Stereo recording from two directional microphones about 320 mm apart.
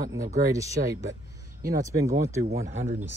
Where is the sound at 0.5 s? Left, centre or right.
Centre.